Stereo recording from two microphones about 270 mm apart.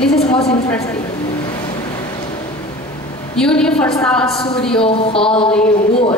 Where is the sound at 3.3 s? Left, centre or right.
Centre.